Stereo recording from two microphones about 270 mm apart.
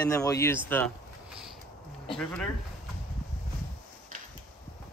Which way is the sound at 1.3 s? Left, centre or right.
Centre.